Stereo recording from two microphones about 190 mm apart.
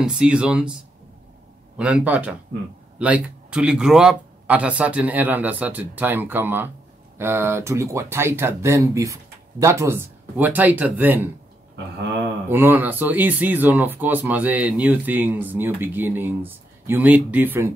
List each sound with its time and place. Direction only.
0.0 s speech: 5° right (ahead or behind)
1.8 s speech: 5° right (ahead or behind)
12.4 s speech: 10° right (ahead or behind)